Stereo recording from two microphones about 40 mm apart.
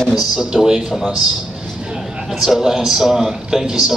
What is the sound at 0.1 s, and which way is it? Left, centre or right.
A man's voice, centre.